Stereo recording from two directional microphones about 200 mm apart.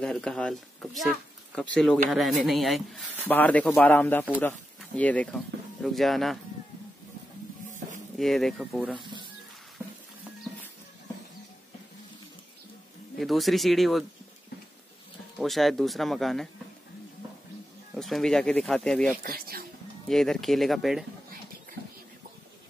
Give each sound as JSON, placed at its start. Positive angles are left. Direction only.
{"t": 0.0, "sound": "speech", "side_deg": 5}
{"t": 8.2, "sound": "speech", "side_deg": 0}
{"t": 8.9, "sound": "speech", "side_deg": -25}
{"t": 13.2, "sound": "speech", "side_deg": 0}
{"t": 15.3, "sound": "speech", "side_deg": 0}
{"t": 17.9, "sound": "speech", "side_deg": 0}
{"t": 19.2, "sound": "speech", "side_deg": -45}
{"t": 20.1, "sound": "speech", "side_deg": 0}